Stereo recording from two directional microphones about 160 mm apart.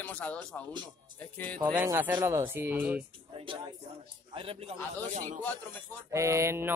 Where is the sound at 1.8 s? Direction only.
15° right (ahead or behind).